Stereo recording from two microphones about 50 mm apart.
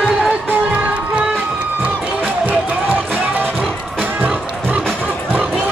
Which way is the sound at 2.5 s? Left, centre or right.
Right.